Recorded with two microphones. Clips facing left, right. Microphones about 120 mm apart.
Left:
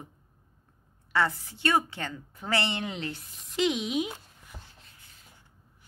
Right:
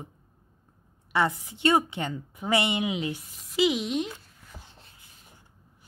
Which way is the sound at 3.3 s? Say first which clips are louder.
Right 2 dB; centre (ahead or behind).